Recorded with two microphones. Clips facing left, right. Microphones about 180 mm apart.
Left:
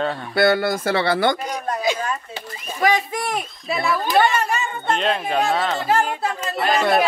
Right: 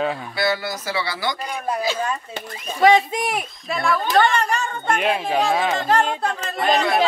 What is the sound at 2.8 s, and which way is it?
Speech, 25° right (ahead or behind).